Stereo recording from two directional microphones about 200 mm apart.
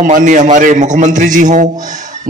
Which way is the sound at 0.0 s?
40° right (ahead or behind).